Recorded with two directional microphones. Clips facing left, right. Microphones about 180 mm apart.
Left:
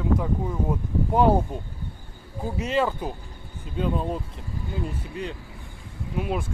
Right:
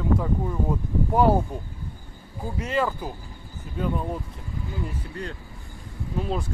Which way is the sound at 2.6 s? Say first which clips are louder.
Left 1 dB; 20° left (ahead or behind).